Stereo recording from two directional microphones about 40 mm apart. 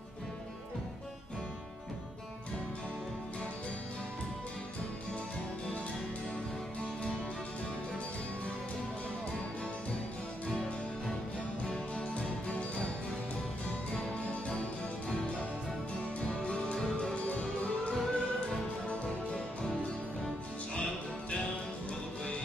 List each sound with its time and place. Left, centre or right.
11.6 s music: left
16.2 s music: left
16.7 s music: centre
17.1 s music: left